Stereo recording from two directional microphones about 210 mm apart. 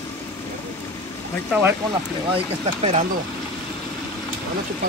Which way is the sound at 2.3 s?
30° right (ahead or behind).